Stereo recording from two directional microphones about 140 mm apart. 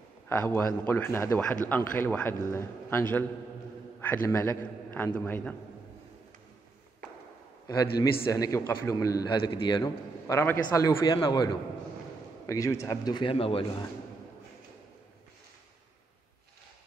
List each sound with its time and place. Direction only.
0.3 s a man's voice: 15° left (ahead or behind)
7.6 s a man's voice: 25° left (ahead or behind)
11.1 s a man's voice: 30° left (ahead or behind)